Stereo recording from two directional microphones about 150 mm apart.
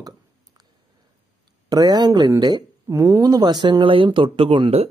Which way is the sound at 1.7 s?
25° right (ahead or behind).